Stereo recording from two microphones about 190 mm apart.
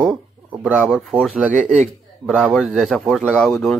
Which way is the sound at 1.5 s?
40° right (ahead or behind).